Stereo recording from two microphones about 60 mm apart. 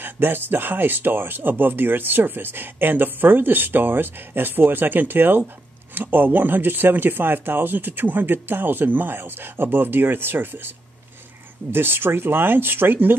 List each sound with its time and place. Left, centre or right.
0.0 s speech: right
11.7 s speech: right